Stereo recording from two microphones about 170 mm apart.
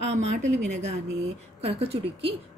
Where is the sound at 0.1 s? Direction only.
40° right (ahead or behind).